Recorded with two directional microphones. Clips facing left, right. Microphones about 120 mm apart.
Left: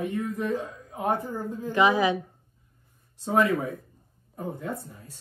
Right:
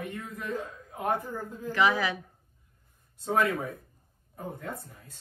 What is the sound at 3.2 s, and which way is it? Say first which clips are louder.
Speech: left 4 dB; 25° left (ahead or behind).